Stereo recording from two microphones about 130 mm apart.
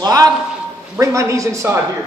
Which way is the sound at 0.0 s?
30° right (ahead or behind).